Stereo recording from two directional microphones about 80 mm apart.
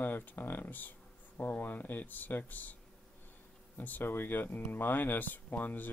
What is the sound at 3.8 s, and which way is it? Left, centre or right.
Speech, left.